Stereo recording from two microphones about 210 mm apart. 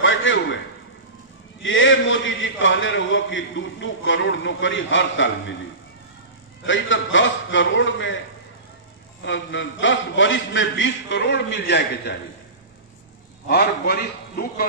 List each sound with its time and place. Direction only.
0.0 s a sound: 65° left (ahead or behind)
1.6 s a man's voice: 65° left (ahead or behind)
6.6 s a man's voice: 65° left (ahead or behind)
9.2 s a man's voice: 60° left (ahead or behind)
13.5 s a man's voice: 50° left (ahead or behind)